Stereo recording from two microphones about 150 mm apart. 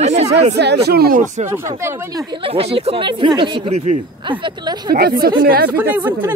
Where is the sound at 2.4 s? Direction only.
40° right (ahead or behind).